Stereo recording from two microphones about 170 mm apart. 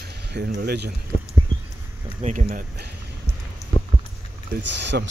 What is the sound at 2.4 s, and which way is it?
Speech, 60° right (ahead or behind).